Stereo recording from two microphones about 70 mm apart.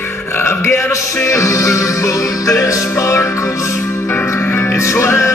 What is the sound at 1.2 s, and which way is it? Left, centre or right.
Music, left.